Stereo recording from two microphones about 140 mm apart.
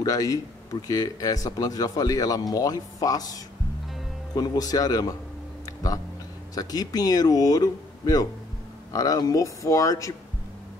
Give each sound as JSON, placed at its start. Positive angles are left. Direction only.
{"t": 0.0, "sound": "speech", "side_deg": 25}
{"t": 4.4, "sound": "speech", "side_deg": 25}
{"t": 6.5, "sound": "speech", "side_deg": 25}